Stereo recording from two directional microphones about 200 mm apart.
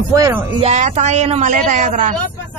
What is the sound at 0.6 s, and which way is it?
A woman's voice, 35° right (ahead or behind).